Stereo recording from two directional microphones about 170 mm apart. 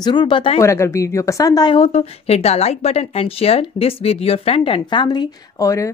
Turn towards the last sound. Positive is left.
turn(degrees=20)  # may be behind; listen again after turning